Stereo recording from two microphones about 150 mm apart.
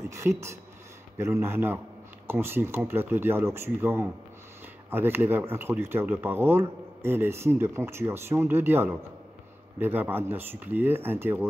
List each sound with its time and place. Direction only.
0.1 s speech: 20° right (ahead or behind)